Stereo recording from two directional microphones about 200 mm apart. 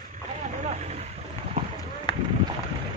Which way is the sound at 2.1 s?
20° left (ahead or behind).